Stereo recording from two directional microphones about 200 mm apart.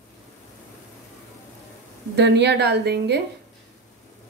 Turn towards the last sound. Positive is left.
turn(degrees=-55)  # may be behind; listen again after turning